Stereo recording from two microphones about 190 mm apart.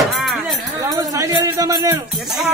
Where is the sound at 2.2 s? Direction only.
Centre (ahead or behind).